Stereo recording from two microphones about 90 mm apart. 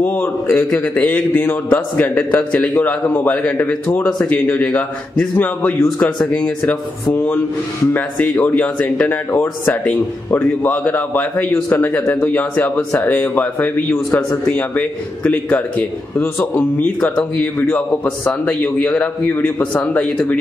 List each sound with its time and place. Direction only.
0.0 s a man's voice: 25° left (ahead or behind)